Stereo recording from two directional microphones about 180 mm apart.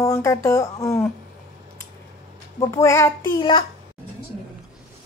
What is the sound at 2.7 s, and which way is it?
Speech, 15° left (ahead or behind).